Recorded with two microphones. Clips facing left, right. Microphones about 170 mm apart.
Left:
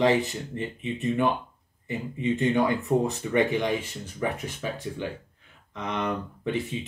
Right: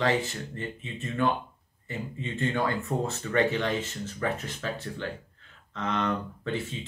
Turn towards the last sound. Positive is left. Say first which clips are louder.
# left 3 dB
turn(degrees=15)  # may be behind; listen again after turning